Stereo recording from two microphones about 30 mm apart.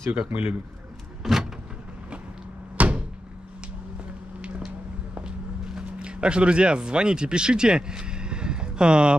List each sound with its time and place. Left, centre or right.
0.3 s speech: right
1.2 s vehicle: centre
2.8 s a sound: right
4.4 s vehicle: right
5.9 s speech: right